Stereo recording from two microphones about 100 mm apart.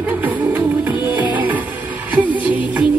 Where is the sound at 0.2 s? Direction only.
15° right (ahead or behind).